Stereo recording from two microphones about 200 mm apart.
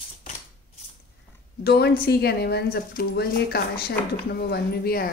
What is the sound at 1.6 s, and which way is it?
Music, 55° left (ahead or behind).